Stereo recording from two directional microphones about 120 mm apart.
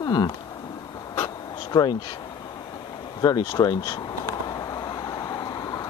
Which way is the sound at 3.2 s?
35° left (ahead or behind).